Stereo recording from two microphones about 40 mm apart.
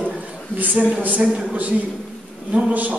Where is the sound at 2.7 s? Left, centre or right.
Right.